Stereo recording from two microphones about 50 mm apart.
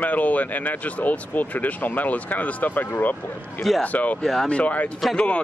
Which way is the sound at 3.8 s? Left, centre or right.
Left.